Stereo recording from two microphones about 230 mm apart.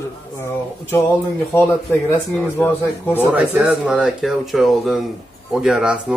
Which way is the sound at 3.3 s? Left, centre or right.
Centre.